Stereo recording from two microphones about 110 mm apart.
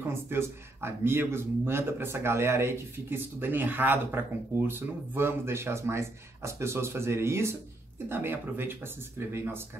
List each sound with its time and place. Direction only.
0.1 s speech: 20° right (ahead or behind)